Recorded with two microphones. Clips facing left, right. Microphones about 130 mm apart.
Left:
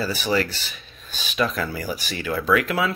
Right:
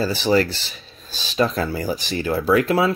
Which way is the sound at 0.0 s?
35° right (ahead or behind).